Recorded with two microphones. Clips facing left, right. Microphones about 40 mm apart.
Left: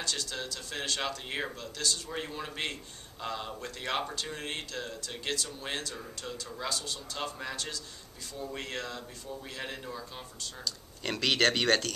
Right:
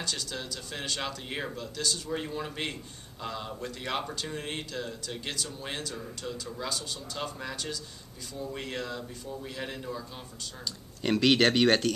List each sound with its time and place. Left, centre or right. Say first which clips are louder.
0.0 s speech: even; centre
11.0 s speech: right 5 dB; centre